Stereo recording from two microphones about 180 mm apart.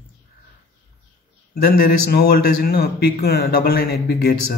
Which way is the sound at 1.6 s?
55° left (ahead or behind).